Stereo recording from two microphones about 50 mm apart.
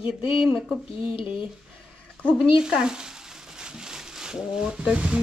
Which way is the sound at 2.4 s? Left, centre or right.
Centre.